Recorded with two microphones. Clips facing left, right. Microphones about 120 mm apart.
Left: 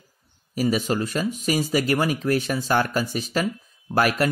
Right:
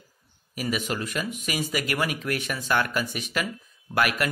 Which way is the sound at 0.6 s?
35° left (ahead or behind).